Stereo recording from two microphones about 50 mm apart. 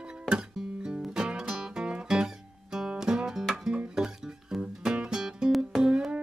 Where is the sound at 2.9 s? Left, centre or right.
Centre.